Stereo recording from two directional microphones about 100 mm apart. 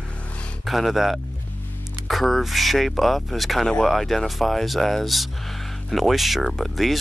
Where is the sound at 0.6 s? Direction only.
Centre (ahead or behind).